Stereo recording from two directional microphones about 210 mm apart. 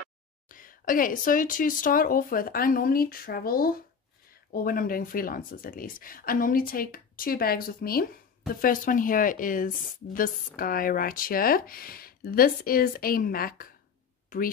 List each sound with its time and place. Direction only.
0.5 s speech: 40° left (ahead or behind)